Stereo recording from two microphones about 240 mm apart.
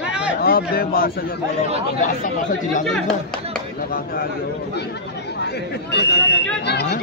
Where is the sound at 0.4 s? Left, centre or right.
Left.